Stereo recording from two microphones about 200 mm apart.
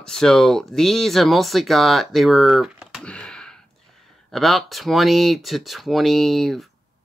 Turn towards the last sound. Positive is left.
turn(degrees=0)  # may be behind; listen again after turning